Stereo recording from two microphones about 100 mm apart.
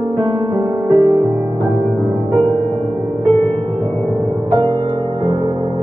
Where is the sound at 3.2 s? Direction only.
20° left (ahead or behind).